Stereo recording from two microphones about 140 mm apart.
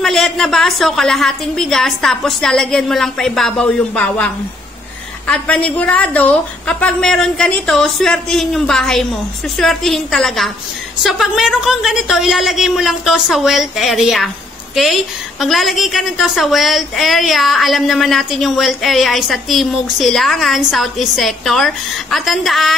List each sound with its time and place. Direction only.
0.0 s a woman's voice: centre (ahead or behind)